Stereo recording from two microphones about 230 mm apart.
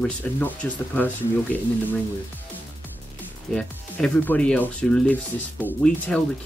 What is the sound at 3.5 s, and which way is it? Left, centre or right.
Speech, centre.